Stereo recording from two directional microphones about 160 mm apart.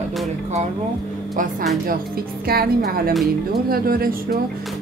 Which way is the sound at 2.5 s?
70° right (ahead or behind).